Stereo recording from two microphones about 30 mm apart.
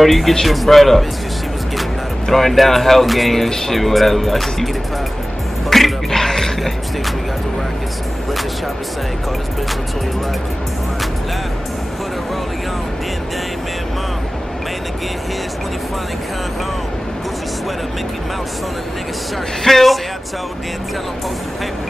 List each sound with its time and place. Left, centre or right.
0.0 s speech: centre
2.2 s speech: centre
3.4 s speech: centre
3.7 s speech: centre
5.7 s music: centre
19.6 s speech: centre